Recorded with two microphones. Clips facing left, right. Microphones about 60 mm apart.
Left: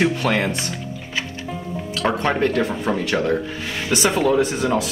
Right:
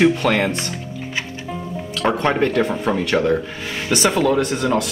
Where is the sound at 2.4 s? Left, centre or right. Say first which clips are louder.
Right 2 dB; right.